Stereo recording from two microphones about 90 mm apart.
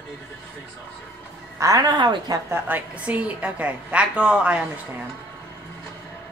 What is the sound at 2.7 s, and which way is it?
A woman's voice, 20° right (ahead or behind).